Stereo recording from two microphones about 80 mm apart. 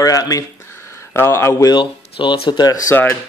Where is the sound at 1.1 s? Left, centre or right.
Left.